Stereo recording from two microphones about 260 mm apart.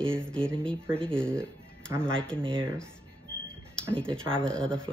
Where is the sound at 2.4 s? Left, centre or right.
Centre.